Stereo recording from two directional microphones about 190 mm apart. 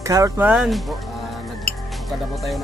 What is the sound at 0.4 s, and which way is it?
Speech, centre (ahead or behind).